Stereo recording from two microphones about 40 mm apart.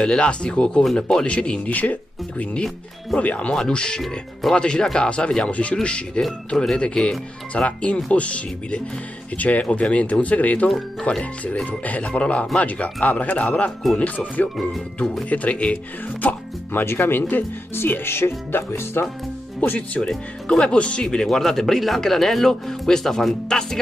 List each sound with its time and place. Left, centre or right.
0.0 s speech: left
1.7 s speech: left
3.2 s speech: left
3.5 s speech: left
7.6 s speech: left
16.7 s speech: left
17.2 s speech: left
17.7 s speech: left
18.7 s speech: left
19.6 s speech: left
20.4 s speech: left
21.0 s speech: centre